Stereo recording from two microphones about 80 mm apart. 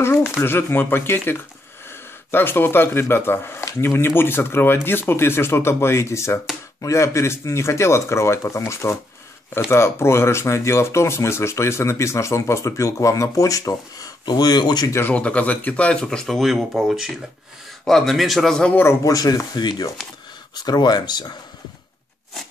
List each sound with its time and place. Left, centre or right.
0.0 s speech: left
15.0 s speech: centre
16.3 s a man's voice: centre
19.0 s speech: left